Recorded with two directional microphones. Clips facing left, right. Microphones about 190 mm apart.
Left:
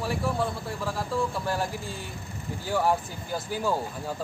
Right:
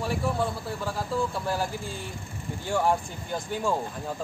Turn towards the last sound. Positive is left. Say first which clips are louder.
# even
turn(degrees=5)  # may be behind; listen again after turning